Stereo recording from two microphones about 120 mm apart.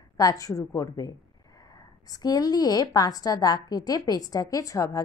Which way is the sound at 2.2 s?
35° left (ahead or behind).